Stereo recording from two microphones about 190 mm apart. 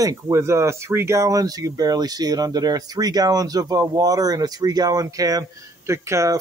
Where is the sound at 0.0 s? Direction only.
15° right (ahead or behind).